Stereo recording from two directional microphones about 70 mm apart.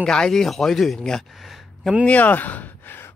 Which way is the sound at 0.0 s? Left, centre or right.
Centre.